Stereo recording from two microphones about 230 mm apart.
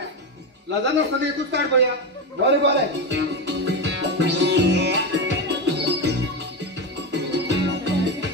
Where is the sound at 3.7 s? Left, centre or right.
Right.